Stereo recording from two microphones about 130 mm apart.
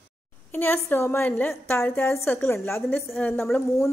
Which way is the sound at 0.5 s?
15° left (ahead or behind).